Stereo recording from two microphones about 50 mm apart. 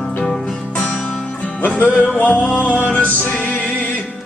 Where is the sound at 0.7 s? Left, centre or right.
Left.